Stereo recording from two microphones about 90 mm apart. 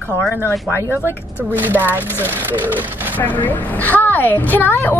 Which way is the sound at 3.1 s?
20° left (ahead or behind).